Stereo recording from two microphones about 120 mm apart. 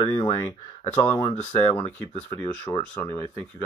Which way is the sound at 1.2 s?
60° left (ahead or behind).